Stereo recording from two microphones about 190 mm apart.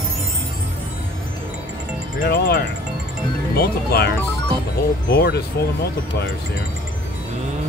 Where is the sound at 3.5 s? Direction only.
55° left (ahead or behind).